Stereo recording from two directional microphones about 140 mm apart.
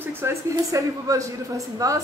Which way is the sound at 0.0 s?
20° right (ahead or behind).